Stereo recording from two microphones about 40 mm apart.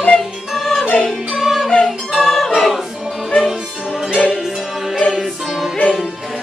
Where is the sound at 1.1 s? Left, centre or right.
Centre.